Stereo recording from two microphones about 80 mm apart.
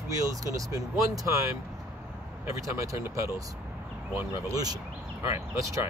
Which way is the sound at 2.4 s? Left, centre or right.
Right.